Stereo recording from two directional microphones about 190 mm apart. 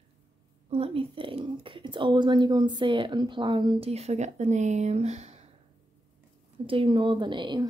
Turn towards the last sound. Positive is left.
turn(degrees=-25)  # may be behind; listen again after turning